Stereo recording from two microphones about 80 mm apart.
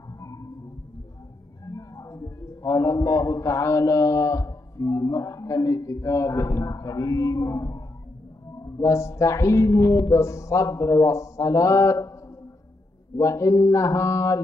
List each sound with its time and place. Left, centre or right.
0.2 s music: left
1.7 s a man's voice: left
8.6 s music: left
13.2 s music: left